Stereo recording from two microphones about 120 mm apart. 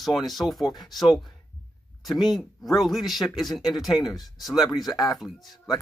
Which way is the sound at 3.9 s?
35° left (ahead or behind).